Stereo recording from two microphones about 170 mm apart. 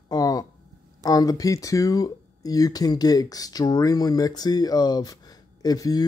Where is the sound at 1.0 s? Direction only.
20° left (ahead or behind).